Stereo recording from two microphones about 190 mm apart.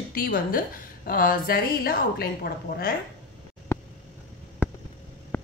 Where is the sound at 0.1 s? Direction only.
50° left (ahead or behind).